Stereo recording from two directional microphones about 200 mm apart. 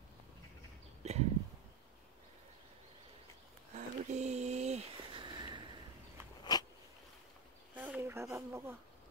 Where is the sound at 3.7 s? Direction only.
35° right (ahead or behind).